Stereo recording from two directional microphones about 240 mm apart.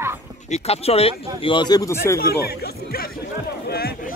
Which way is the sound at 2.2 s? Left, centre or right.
Left.